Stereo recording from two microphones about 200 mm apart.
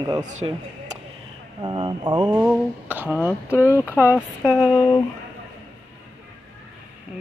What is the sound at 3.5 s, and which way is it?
Speech, 10° left (ahead or behind).